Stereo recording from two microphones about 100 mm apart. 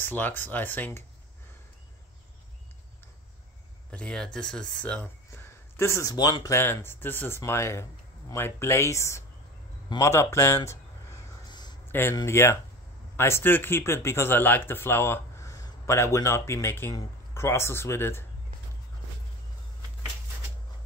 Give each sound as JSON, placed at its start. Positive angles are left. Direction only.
{"t": 0.0, "sound": "speech", "side_deg": 20}
{"t": 3.9, "sound": "speech", "side_deg": 10}
{"t": 5.3, "sound": "a sound", "side_deg": 30}
{"t": 6.1, "sound": "speech", "side_deg": 40}
{"t": 6.6, "sound": "speech", "side_deg": 20}
{"t": 11.4, "sound": "a sound", "side_deg": 45}
{"t": 11.9, "sound": "speech", "side_deg": 20}